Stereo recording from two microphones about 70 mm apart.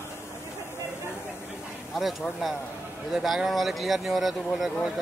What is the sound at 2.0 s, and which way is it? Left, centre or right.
Speech, centre.